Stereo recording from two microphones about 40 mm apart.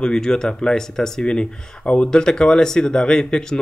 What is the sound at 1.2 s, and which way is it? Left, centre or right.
Speech, left.